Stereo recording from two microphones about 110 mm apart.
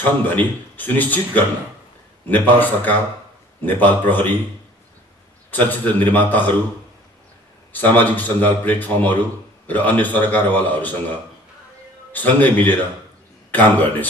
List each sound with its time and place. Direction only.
0.0 s a man's voice: 15° left (ahead or behind)
5.5 s a man's voice: 15° left (ahead or behind)
7.7 s a man's voice: 15° left (ahead or behind)
12.1 s a man's voice: 15° left (ahead or behind)